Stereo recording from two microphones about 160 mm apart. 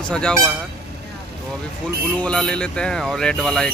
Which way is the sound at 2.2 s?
5° left (ahead or behind).